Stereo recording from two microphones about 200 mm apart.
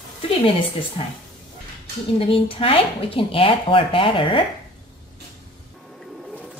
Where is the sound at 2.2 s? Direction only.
25° left (ahead or behind).